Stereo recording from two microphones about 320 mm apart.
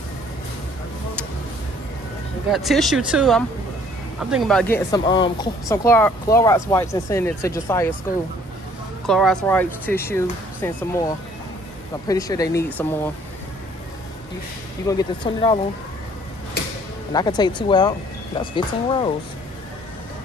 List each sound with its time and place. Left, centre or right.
2.5 s speech: centre
9.0 s speech: centre
14.9 s speech: centre
17.1 s speech: centre